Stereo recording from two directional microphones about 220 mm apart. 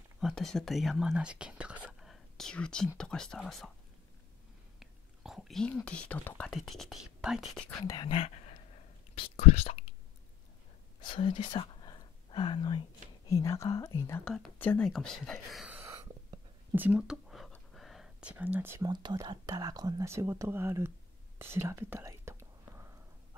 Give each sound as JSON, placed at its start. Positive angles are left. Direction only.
{"t": 0.2, "sound": "speech", "side_deg": 0}
{"t": 4.7, "sound": "speech", "side_deg": 0}
{"t": 7.8, "sound": "speech", "side_deg": 20}
{"t": 11.0, "sound": "speech", "side_deg": 20}
{"t": 21.4, "sound": "whispering", "side_deg": -10}